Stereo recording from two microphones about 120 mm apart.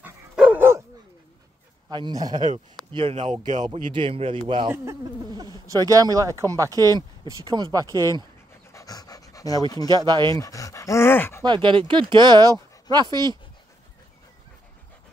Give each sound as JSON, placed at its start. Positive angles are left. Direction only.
{"t": 0.0, "sound": "dog", "side_deg": -15}
{"t": 1.9, "sound": "speech", "side_deg": -40}
{"t": 3.4, "sound": "speech", "side_deg": -85}
{"t": 3.9, "sound": "a man's voice", "side_deg": -50}
{"t": 4.6, "sound": "speech", "side_deg": -25}
{"t": 8.7, "sound": "pant", "side_deg": 30}
{"t": 9.8, "sound": "speech", "side_deg": -35}
{"t": 10.3, "sound": "speech", "side_deg": 30}
{"t": 11.4, "sound": "speech", "side_deg": -40}